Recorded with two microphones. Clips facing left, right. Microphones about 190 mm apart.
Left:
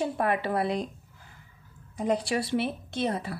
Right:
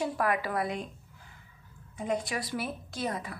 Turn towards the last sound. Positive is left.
turn(degrees=30)  # may be behind; listen again after turning